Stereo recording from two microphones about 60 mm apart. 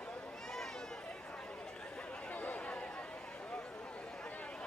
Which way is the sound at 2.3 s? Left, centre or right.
Left.